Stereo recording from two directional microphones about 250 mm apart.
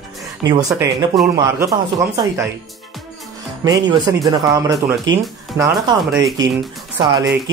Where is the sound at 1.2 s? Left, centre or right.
Centre.